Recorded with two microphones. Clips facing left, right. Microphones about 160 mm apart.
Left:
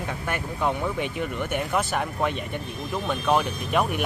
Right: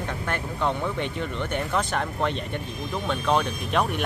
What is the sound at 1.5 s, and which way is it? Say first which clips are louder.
Speech: even; 5° left (ahead or behind).